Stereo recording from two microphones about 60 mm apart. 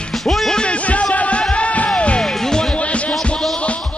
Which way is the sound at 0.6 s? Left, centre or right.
Left.